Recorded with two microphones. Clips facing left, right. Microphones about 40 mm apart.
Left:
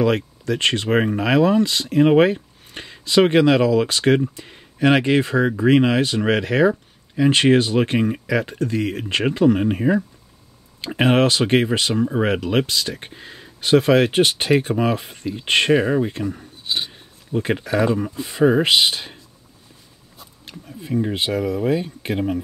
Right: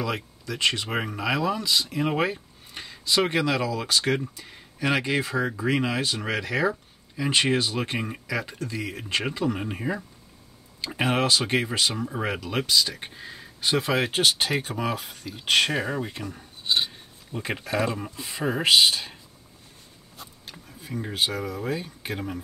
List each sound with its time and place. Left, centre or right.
0.0 s speech: left
0.8 s speech: left
13.0 s speech: centre
13.6 s speech: left; by 16.4 s centre
16.6 s filing: centre
17.3 s speech: left
18.6 s speech: left
20.5 s a sound: centre
20.9 s speech: left